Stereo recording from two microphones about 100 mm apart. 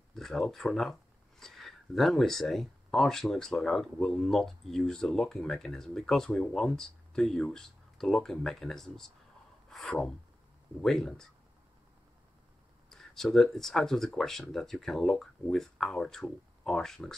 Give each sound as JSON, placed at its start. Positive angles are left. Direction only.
{"t": 0.1, "sound": "speech", "side_deg": 5}
{"t": 9.7, "sound": "a sound", "side_deg": 5}
{"t": 10.8, "sound": "speech", "side_deg": 5}
{"t": 12.9, "sound": "speech", "side_deg": 5}